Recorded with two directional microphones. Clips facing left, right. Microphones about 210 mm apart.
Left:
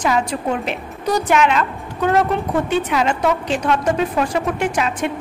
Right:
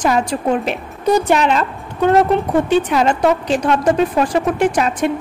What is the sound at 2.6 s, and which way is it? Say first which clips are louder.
A woman's voice: right 4 dB; 35° right (ahead or behind).